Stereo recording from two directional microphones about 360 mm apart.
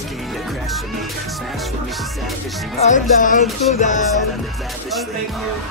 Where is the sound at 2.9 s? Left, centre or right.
Left.